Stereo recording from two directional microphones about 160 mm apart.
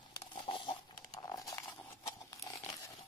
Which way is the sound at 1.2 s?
20° left (ahead or behind).